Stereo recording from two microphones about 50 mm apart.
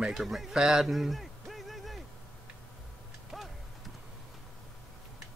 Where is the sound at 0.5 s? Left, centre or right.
Centre.